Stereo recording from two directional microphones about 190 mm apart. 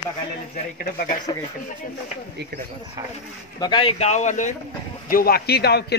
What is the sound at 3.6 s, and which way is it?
Speech, 25° left (ahead or behind).